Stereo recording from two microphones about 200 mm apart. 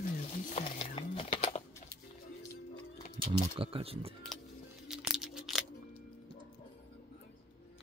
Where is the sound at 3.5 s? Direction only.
25° right (ahead or behind).